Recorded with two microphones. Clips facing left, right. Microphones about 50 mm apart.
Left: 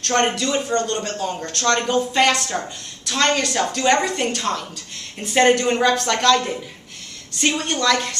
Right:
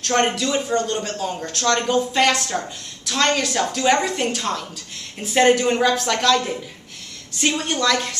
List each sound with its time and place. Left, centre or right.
0.0 s a woman's voice: centre
1.1 s a man's voice: centre
1.4 s a woman's voice: centre
1.7 s a man's voice: centre
7.6 s a woman's voice: centre